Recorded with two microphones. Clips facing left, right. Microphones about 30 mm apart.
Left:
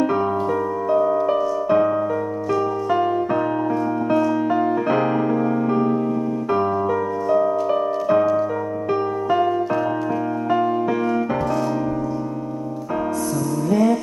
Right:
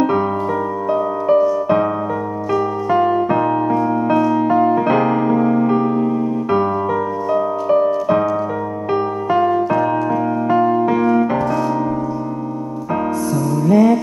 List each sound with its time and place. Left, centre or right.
0.0 s music: centre
8.9 s music: right
9.7 s music: centre
13.3 s music: centre